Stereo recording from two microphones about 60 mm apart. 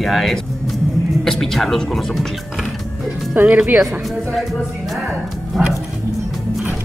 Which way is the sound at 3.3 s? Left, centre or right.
Right.